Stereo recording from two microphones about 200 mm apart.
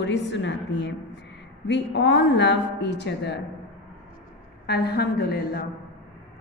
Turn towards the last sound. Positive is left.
turn(degrees=50)  # may be behind; listen again after turning